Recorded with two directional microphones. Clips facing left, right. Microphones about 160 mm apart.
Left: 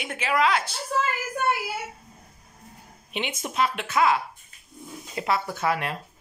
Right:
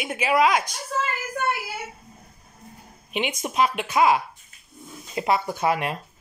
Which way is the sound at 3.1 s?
15° right (ahead or behind).